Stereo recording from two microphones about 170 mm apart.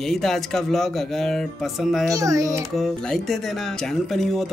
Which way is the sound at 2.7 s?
Centre (ahead or behind).